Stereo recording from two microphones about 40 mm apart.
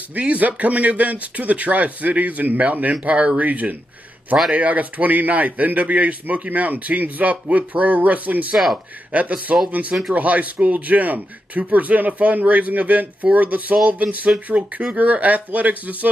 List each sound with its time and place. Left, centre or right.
0.1 s a man's voice: right